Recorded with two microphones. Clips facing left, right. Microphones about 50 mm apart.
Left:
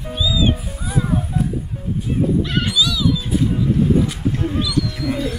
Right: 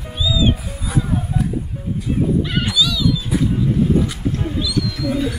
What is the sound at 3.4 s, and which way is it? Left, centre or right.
Vehicle, centre.